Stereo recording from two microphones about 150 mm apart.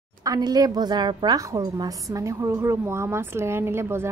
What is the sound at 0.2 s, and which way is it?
A woman's voice, 25° right (ahead or behind).